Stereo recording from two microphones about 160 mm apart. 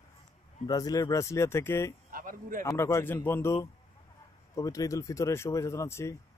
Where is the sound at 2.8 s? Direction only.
15° left (ahead or behind).